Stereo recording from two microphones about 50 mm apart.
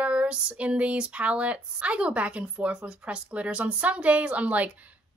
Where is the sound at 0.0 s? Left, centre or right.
Right.